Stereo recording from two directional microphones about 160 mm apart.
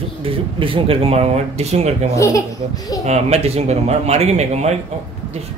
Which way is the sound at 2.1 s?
20° left (ahead or behind).